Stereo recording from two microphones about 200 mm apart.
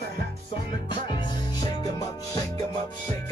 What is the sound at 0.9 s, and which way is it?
Music, 20° left (ahead or behind).